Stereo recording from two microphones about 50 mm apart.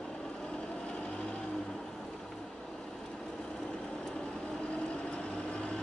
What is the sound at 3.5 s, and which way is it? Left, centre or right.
Vehicle, centre.